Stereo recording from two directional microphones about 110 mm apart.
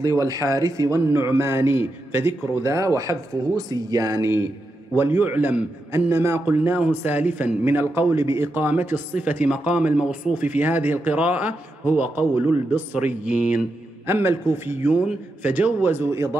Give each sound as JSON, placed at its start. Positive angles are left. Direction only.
{"t": 0.0, "sound": "speech", "side_deg": -30}
{"t": 4.9, "sound": "a man's voice", "side_deg": -20}
{"t": 14.0, "sound": "a man's voice", "side_deg": -20}